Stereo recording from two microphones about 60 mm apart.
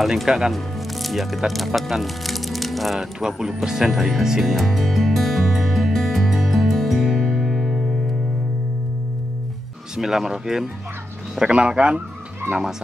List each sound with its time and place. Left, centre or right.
0.0 s speech: centre
3.6 s music: centre
9.9 s speech: centre